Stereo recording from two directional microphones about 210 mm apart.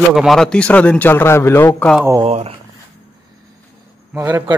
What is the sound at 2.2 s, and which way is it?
Speech, 30° right (ahead or behind).